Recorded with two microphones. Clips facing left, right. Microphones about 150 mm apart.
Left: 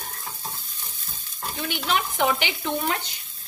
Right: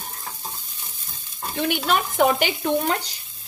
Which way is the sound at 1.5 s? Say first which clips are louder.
Right 4 dB; 55° right (ahead or behind).